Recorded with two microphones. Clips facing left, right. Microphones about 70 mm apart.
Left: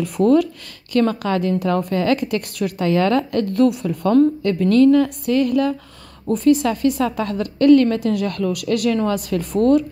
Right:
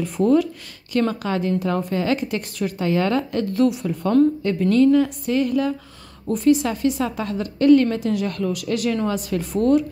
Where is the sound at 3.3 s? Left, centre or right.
Left.